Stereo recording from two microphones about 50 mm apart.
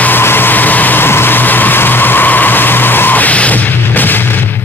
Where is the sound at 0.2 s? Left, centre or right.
Left.